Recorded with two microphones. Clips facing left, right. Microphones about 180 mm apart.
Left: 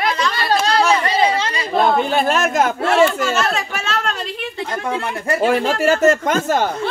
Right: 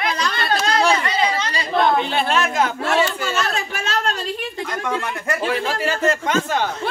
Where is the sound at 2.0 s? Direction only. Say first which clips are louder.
Left 3 dB; 45° left (ahead or behind).